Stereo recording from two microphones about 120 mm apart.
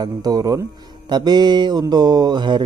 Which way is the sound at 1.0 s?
35° right (ahead or behind).